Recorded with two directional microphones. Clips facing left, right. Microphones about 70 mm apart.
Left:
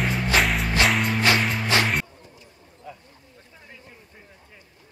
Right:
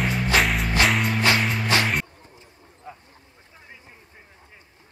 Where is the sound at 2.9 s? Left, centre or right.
Right.